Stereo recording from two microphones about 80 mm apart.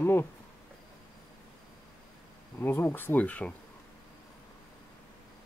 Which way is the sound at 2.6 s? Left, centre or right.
Left.